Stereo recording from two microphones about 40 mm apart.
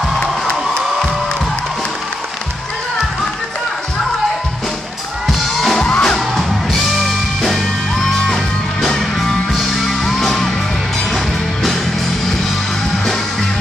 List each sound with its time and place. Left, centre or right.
0.2 s cheering: left
5.8 s music: left
6.1 s music: centre